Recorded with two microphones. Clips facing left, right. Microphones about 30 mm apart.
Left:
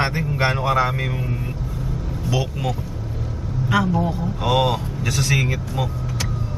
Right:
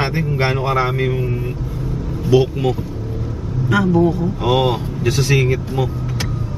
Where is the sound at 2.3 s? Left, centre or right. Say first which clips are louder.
Right 11 dB; centre.